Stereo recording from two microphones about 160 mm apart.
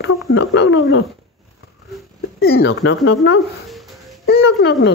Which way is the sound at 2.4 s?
90° left.